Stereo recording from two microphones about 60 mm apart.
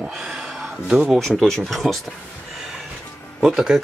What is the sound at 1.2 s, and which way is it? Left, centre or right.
Speech, centre.